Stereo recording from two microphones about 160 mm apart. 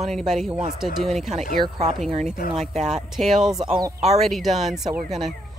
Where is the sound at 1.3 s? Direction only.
45° right (ahead or behind).